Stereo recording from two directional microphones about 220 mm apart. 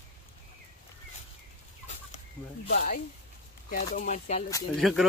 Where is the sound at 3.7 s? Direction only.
40° left (ahead or behind).